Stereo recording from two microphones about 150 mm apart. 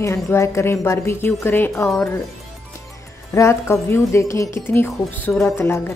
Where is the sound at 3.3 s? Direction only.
20° left (ahead or behind).